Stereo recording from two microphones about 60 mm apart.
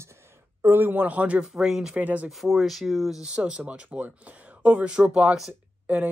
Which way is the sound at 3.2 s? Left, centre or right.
Centre.